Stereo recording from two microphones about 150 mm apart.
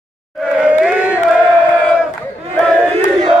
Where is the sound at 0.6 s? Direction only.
10° right (ahead or behind).